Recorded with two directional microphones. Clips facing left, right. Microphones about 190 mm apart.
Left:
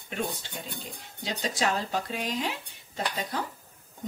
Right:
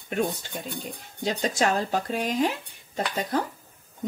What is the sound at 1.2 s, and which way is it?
Speech, 50° right (ahead or behind).